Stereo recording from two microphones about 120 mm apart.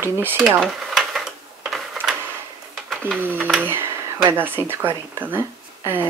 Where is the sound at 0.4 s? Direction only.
5° right (ahead or behind).